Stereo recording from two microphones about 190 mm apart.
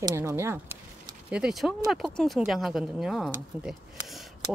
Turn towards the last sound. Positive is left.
turn(degrees=0)  # may be behind; listen again after turning